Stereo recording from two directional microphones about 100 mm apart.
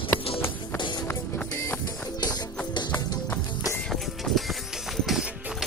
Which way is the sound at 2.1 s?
45° left (ahead or behind).